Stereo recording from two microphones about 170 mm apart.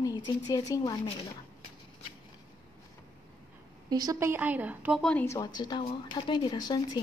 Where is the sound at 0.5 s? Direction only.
20° left (ahead or behind).